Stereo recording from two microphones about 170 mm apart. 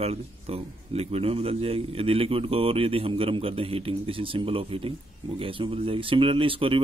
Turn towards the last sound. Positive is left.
turn(degrees=-30)  # may be behind; listen again after turning